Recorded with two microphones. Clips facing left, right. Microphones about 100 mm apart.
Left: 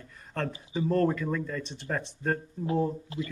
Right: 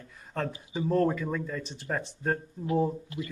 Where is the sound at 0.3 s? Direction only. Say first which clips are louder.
Left 1 dB; 5° right (ahead or behind).